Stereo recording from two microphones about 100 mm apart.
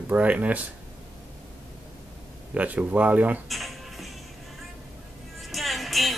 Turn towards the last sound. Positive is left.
turn(degrees=0)  # may be behind; listen again after turning